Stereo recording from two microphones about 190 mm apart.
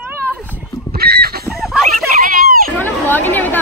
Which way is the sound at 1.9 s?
50° right (ahead or behind).